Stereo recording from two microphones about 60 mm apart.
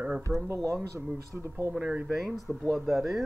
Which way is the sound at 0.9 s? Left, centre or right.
Right.